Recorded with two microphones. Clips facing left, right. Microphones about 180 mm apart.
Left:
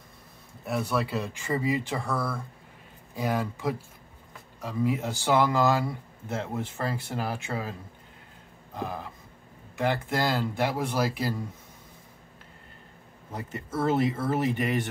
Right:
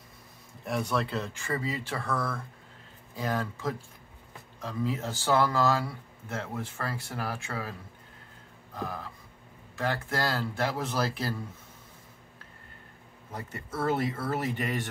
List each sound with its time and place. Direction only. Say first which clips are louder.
0.7 s speech: left 2 dB; 5° left (ahead or behind); by 7.7 s 20° left (ahead or behind)
8.7 s speech: left 2 dB; 20° left (ahead or behind)
13.3 s speech: left 4 dB; 20° left (ahead or behind)